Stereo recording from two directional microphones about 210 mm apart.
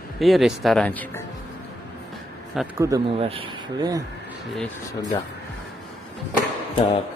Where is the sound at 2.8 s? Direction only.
15° right (ahead or behind).